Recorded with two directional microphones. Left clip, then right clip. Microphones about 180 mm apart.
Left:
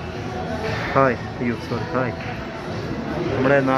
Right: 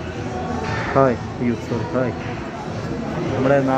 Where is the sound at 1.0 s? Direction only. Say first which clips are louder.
Right 1 dB; 5° right (ahead or behind).